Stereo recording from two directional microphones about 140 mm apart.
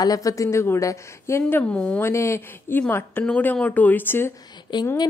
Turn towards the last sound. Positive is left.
turn(degrees=35)  # may be behind; listen again after turning